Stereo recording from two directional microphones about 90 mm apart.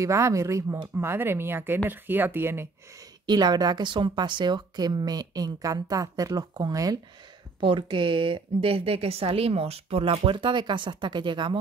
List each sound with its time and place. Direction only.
0.0 s speech: 35° right (ahead or behind)
3.3 s a woman's voice: 50° right (ahead or behind)
7.6 s a woman's voice: 70° right (ahead or behind)